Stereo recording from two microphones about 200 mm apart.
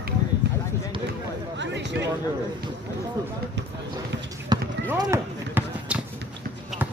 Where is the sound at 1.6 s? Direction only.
60° right (ahead or behind).